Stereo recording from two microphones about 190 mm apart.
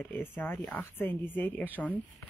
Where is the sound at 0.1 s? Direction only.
10° left (ahead or behind).